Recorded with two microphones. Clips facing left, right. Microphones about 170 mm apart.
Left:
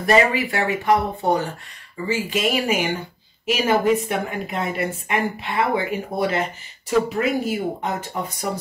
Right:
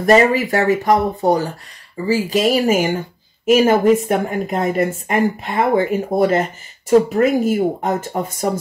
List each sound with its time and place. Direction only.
0.0 s speech: 40° right (ahead or behind)